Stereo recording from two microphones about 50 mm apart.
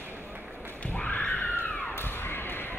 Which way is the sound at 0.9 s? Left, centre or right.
Centre.